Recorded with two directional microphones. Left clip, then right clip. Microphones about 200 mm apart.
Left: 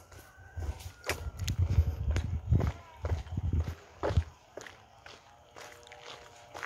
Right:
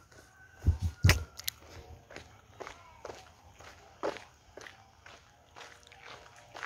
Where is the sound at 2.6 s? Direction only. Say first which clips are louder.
Left 4 dB; 5° right (ahead or behind).